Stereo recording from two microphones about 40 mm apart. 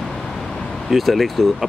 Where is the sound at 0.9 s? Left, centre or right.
Centre.